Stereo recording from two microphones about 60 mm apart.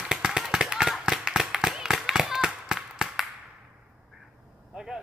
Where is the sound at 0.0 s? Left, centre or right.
Centre.